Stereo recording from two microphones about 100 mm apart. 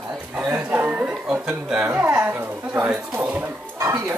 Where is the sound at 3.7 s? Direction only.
25° right (ahead or behind).